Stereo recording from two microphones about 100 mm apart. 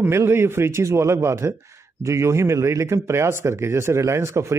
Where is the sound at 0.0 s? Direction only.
25° right (ahead or behind).